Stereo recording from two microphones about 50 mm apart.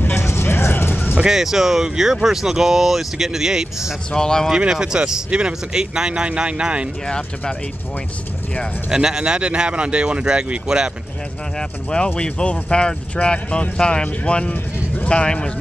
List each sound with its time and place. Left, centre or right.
0.0 s vehicle: left
1.1 s speech: centre
4.1 s speech: centre
4.5 s speech: centre
7.1 s speech: centre
8.8 s speech: centre
11.5 s speech: centre